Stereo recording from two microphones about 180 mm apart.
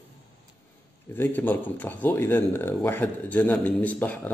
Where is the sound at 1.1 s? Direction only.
10° left (ahead or behind).